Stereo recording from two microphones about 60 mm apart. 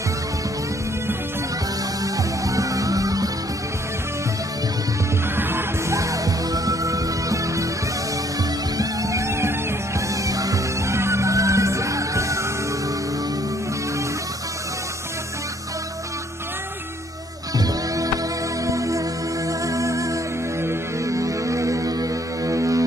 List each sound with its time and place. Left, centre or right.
2.4 s music: right
5.3 s music: right
5.9 s music: right
8.7 s music: right
10.2 s music: right
10.9 s music: right
17.6 s music: right
18.7 s music: right